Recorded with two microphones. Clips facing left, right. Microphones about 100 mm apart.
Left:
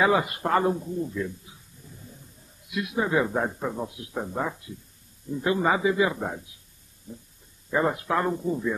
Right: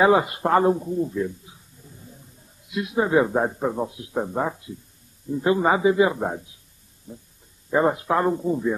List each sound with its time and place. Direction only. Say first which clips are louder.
0.0 s a man's voice: right 5 dB; 25° right (ahead or behind)
2.7 s a man's voice: right 5 dB; 25° right (ahead or behind)
7.7 s a man's voice: right 4 dB; 25° right (ahead or behind)